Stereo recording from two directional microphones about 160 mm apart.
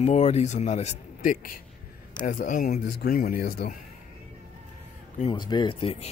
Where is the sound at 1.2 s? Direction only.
60° left (ahead or behind).